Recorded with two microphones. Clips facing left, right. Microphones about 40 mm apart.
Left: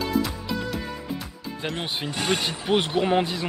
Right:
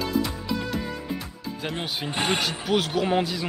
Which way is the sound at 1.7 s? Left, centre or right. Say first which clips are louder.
Left 1 dB; centre.